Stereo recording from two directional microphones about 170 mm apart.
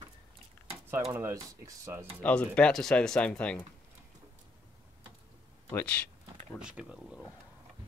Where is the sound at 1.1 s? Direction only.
15° right (ahead or behind).